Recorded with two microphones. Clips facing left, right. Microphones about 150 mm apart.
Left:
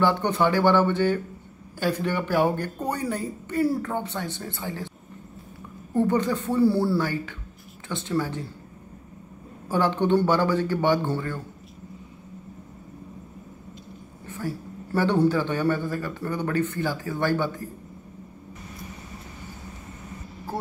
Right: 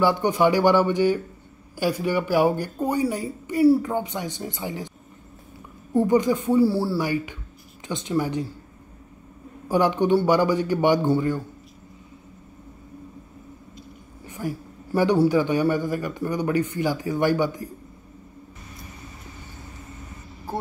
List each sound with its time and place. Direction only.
0.0 s a man's voice: 10° right (ahead or behind)
5.9 s a man's voice: 10° right (ahead or behind)
9.7 s a man's voice: 15° right (ahead or behind)
14.2 s a man's voice: 15° right (ahead or behind)